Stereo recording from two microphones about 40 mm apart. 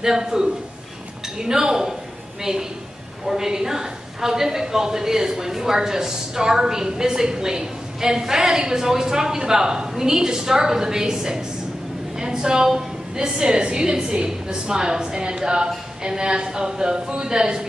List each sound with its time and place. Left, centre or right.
0.0 s a woman's voice: centre
3.3 s a woman's voice: centre
12.2 s a sound: centre
12.7 s a woman's voice: centre